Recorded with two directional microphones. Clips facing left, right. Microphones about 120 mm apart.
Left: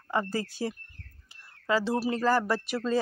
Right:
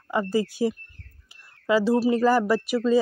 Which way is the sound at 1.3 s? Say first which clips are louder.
Right 5 dB; 10° right (ahead or behind).